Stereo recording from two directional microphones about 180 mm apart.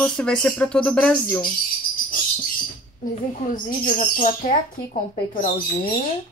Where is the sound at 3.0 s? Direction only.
50° left (ahead or behind).